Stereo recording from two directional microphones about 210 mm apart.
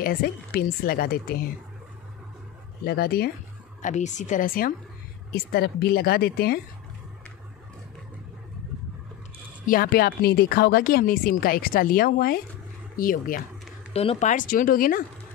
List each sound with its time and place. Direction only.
0.0 s speech: 45° left (ahead or behind)
2.8 s speech: 45° left (ahead or behind)
3.8 s speech: 35° left (ahead or behind)
9.7 s speech: 45° left (ahead or behind)